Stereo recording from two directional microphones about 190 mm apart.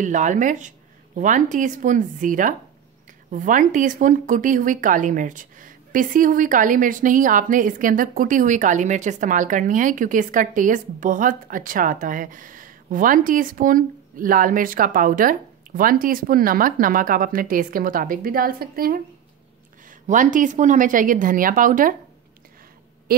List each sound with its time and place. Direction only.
0.0 s a woman's voice: 40° right (ahead or behind)